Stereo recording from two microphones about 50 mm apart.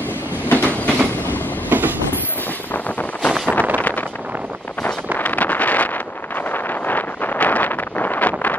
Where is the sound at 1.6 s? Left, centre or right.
Right.